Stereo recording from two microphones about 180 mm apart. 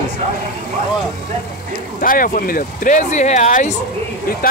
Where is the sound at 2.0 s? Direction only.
50° left (ahead or behind).